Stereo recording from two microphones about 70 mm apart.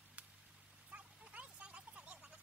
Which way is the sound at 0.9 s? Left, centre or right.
Centre.